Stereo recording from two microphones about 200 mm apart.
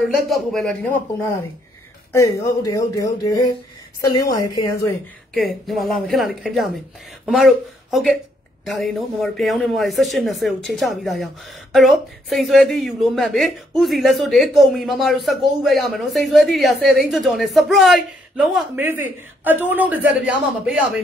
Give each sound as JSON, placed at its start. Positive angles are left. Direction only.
{"t": 0.1, "sound": "a man's voice", "side_deg": 0}
{"t": 2.1, "sound": "speech", "side_deg": 15}
{"t": 5.3, "sound": "a man's voice", "side_deg": 0}